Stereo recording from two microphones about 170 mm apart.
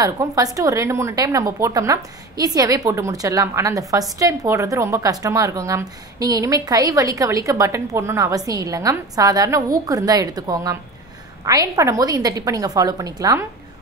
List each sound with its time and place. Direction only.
0.0 s a woman's voice: 20° right (ahead or behind)